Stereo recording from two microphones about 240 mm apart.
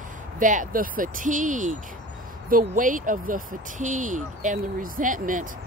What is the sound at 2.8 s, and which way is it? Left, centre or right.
Speech, right.